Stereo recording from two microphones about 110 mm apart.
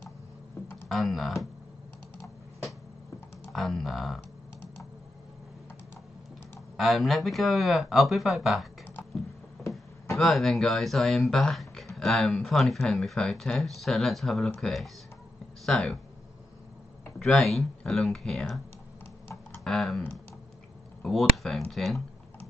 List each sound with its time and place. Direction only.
0.8 s speech: centre (ahead or behind)
3.5 s speech: centre (ahead or behind)
6.8 s speech: centre (ahead or behind)
9.6 s a sound: 25° left (ahead or behind)
10.1 s speech: centre (ahead or behind)
17.2 s speech: 5° left (ahead or behind)
19.6 s speech: 5° left (ahead or behind)
21.0 s speech: centre (ahead or behind)